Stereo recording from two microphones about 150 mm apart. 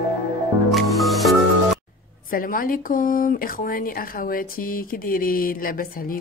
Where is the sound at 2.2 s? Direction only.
70° left (ahead or behind).